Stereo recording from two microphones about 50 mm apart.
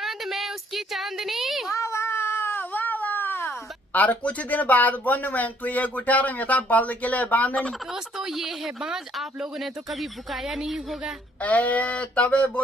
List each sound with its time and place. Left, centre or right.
0.0 s a sound: centre
1.7 s cat: left
7.9 s a woman's voice: centre
11.4 s speech: left